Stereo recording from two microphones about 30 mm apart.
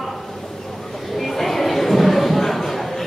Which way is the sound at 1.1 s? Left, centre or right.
Centre.